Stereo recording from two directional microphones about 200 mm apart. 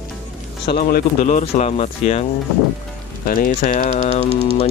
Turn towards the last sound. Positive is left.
turn(degrees=35)  # may be behind; listen again after turning